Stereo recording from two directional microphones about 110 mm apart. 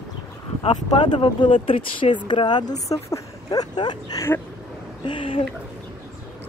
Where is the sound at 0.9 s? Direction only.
45° left (ahead or behind).